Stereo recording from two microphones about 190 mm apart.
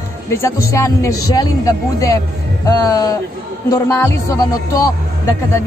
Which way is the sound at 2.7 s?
20° left (ahead or behind).